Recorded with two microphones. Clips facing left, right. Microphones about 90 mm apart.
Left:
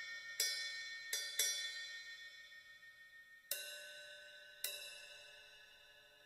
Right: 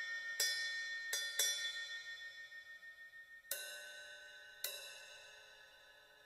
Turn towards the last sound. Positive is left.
turn(degrees=-25)  # may be behind; listen again after turning